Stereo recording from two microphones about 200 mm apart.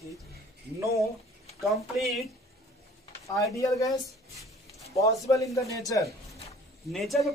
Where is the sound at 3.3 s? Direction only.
15° left (ahead or behind).